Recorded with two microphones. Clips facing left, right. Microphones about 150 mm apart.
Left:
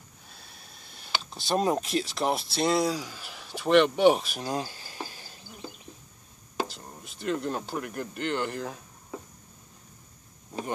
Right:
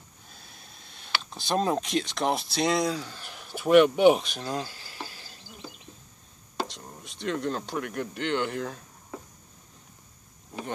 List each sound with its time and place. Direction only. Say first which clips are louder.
0.3 s a sound: even; centre (ahead or behind)
1.3 s speech: even; centre (ahead or behind)
4.5 s speech: left 1 dB; 20° left (ahead or behind)
6.5 s speech: left 1 dB; 5° left (ahead or behind)